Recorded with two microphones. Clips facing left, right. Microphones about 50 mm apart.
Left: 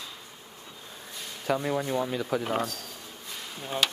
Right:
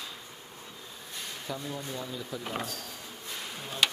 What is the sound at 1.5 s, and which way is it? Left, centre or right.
Speech, left.